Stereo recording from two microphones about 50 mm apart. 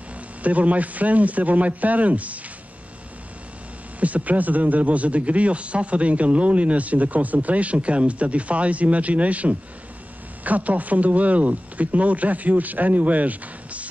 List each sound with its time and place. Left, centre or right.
0.4 s speech: right
4.0 s a man's voice: right